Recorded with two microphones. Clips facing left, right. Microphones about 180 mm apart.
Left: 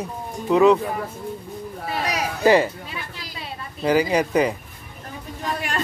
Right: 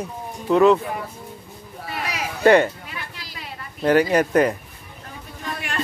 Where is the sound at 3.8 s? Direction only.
Centre (ahead or behind).